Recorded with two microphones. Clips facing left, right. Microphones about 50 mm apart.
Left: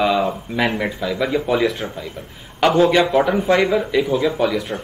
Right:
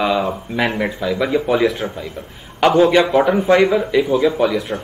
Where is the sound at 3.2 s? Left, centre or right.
Centre.